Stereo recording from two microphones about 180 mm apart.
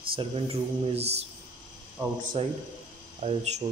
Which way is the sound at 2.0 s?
25° right (ahead or behind).